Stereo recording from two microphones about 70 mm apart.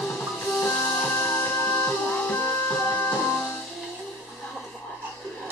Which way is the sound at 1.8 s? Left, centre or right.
Centre.